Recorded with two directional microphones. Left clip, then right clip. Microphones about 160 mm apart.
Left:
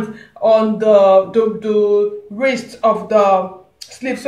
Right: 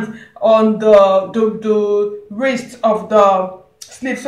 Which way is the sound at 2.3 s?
20° left (ahead or behind).